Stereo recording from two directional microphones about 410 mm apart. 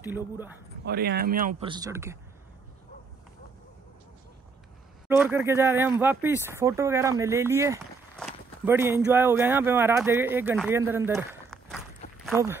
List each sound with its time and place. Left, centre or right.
0.0 s speech: centre
0.8 s speech: right; by 2.1 s centre
5.0 s speech: centre